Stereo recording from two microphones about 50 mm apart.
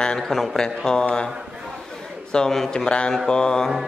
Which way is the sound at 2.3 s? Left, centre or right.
Centre.